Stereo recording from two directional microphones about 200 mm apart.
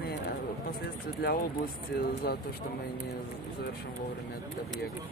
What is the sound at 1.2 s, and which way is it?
Speech, 50° left (ahead or behind).